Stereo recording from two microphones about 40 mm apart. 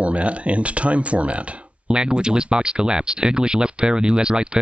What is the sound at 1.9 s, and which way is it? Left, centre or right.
Speech, right.